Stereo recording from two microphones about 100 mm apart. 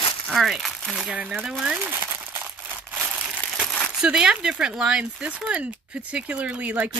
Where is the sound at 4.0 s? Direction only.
10° right (ahead or behind).